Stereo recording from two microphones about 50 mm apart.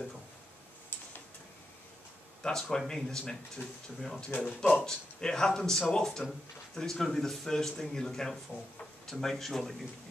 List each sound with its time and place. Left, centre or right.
2.4 s speech: centre
4.8 s speech: centre